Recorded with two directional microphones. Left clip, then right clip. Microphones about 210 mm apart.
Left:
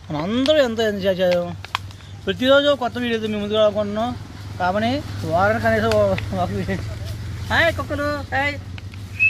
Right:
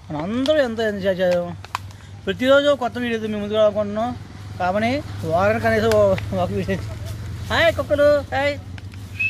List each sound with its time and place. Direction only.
0.1 s speech: 25° left (ahead or behind)
0.5 s speech: 15° left (ahead or behind)
2.2 s speech: 10° right (ahead or behind)
4.6 s speech: 15° right (ahead or behind)
5.4 s speech: 35° right (ahead or behind)